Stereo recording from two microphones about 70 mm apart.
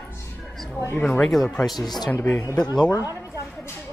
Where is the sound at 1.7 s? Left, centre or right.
Left.